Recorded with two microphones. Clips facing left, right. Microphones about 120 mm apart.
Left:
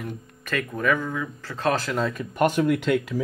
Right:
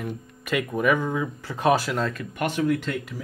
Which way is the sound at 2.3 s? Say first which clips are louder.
Left 4 dB; 45° left (ahead or behind).